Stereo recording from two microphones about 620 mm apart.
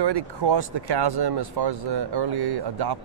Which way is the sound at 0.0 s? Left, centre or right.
Right.